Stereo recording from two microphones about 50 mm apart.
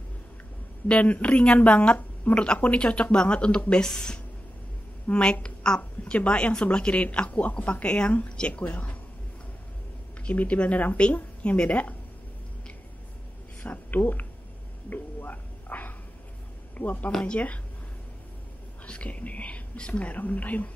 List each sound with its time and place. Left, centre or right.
0.8 s speech: left
10.2 s a woman's voice: left
13.6 s a woman's voice: left
14.9 s whispering: left
17.1 s speech: centre
18.9 s speech: left